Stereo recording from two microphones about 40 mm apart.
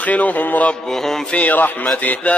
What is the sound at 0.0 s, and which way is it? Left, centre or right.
Mantra, left.